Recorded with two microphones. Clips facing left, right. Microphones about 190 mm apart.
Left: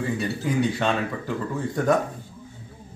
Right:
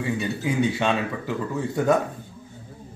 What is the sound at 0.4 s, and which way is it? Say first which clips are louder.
Speech: even; 5° right (ahead or behind).